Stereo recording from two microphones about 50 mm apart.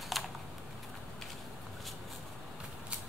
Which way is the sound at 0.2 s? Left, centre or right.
Centre.